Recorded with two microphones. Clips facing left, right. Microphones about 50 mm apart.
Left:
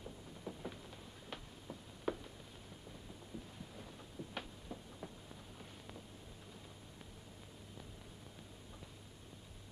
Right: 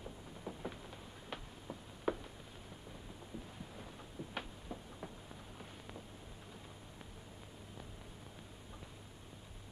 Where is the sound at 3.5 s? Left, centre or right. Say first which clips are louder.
Right 2 dB; right.